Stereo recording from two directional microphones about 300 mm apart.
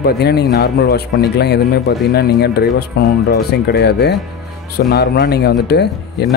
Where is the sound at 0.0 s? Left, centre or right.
Left.